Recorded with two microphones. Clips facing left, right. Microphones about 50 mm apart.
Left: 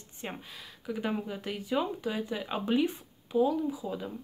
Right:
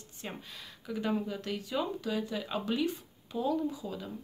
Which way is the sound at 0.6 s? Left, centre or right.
Centre.